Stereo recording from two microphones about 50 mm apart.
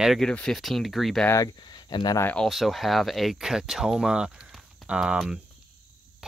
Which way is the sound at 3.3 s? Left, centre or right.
Centre.